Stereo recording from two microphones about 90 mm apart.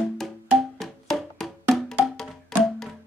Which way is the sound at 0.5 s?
Centre (ahead or behind).